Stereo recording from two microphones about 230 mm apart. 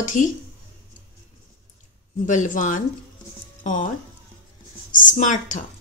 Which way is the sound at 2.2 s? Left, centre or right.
Left.